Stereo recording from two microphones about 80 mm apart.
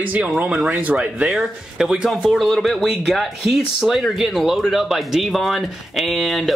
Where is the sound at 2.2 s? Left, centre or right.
Centre.